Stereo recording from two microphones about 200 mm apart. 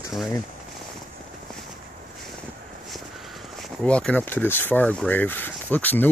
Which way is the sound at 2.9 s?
Centre (ahead or behind).